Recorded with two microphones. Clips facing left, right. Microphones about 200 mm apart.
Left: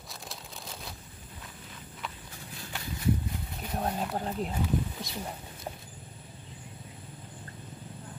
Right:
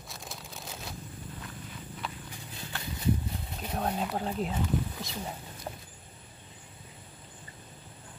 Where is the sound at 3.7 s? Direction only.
Centre (ahead or behind).